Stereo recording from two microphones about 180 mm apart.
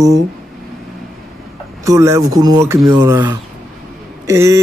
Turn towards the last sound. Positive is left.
turn(degrees=-15)  # may be behind; listen again after turning